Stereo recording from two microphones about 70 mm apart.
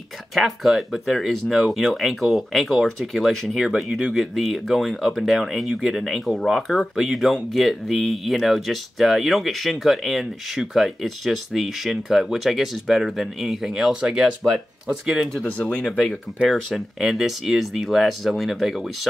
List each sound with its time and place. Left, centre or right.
0.3 s speech: centre
15.4 s speech: left
16.7 s speech: centre